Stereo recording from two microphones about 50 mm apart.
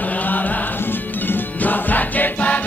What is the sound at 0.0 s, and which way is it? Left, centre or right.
Music, left.